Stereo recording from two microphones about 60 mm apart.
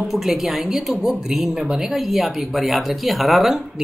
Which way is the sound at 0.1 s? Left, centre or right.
Centre.